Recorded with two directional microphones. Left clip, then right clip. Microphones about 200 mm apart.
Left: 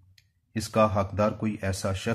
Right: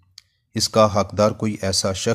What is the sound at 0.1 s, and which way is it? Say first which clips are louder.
Speech: right 6 dB; 40° right (ahead or behind).